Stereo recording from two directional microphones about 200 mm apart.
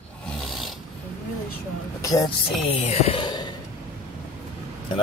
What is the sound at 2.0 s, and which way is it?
Speech, 15° left (ahead or behind).